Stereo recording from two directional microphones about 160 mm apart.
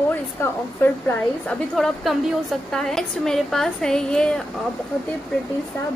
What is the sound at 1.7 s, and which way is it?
A woman's voice, centre (ahead or behind).